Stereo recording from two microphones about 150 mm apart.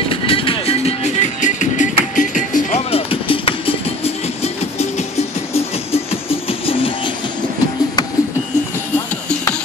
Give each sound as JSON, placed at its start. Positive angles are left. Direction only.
{"t": 0.1, "sound": "music", "side_deg": 40}
{"t": 2.9, "sound": "music", "side_deg": 35}